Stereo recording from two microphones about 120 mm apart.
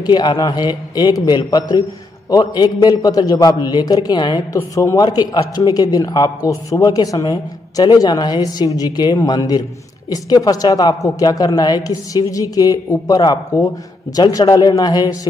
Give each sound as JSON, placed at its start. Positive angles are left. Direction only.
{"t": 0.0, "sound": "a man's voice", "side_deg": 35}
{"t": 4.6, "sound": "a man's voice", "side_deg": 25}